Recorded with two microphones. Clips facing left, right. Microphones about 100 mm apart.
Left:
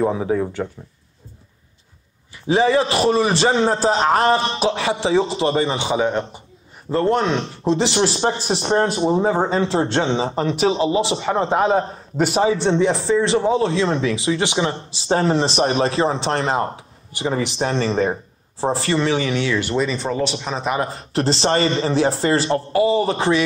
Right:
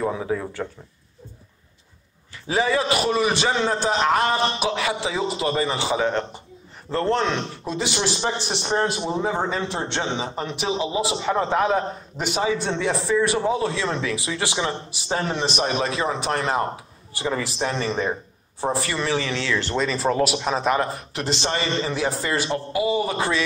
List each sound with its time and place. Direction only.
0.0 s speech: 25° left (ahead or behind)
2.3 s a man's voice: 25° left (ahead or behind)
7.6 s speech: 25° left (ahead or behind)
8.0 s a man's voice: 40° left (ahead or behind)
9.0 s a man's voice: 25° left (ahead or behind); by 20.7 s centre (ahead or behind)
20.8 s a man's voice: 35° left (ahead or behind)